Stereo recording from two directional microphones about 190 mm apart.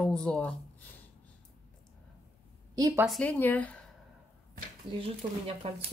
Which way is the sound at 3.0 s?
5° left (ahead or behind).